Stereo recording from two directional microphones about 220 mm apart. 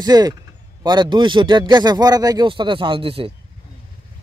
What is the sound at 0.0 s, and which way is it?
A man's voice, 15° right (ahead or behind).